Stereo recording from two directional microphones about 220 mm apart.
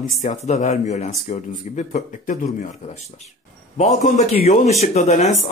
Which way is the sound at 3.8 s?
30° left (ahead or behind).